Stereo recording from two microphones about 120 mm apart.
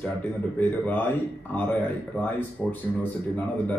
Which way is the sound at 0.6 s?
15° left (ahead or behind).